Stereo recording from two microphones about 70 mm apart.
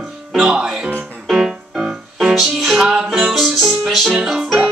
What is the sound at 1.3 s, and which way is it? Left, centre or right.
Music, centre.